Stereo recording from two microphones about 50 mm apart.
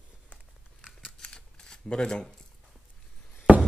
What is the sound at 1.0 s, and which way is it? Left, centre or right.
Camera, centre.